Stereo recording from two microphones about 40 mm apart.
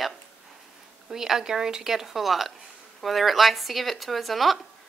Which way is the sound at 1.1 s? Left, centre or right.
Centre.